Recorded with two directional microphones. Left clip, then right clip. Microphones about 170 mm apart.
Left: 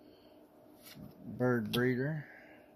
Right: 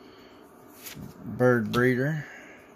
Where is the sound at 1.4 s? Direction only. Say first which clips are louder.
Right 10 dB; 15° right (ahead or behind).